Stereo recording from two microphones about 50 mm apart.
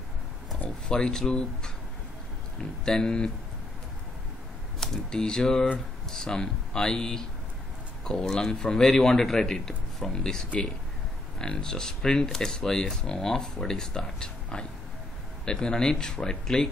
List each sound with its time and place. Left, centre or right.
0.7 s speech: centre
2.8 s speech: centre
4.7 s speech: centre